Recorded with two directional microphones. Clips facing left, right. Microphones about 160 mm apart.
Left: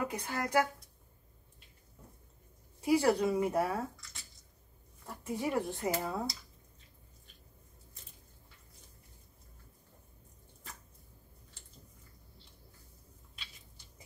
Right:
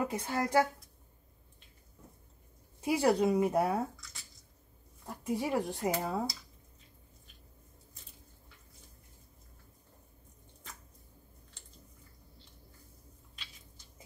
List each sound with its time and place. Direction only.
0.1 s speech: 25° right (ahead or behind)
2.8 s speech: 20° right (ahead or behind)
3.9 s a sound: centre (ahead or behind)
5.0 s speech: 15° right (ahead or behind)